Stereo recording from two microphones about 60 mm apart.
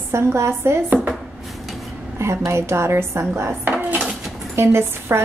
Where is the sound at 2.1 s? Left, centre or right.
Right.